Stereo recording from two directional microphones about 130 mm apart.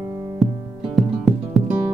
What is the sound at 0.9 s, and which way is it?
Music, centre (ahead or behind).